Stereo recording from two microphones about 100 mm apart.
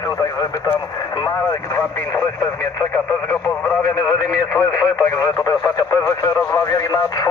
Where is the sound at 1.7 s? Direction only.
25° left (ahead or behind).